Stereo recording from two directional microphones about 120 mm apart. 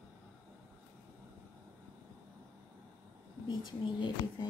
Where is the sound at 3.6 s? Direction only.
40° left (ahead or behind).